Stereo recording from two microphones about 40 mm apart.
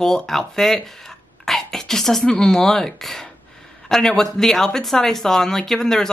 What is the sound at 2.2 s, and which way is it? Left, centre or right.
Speech, centre.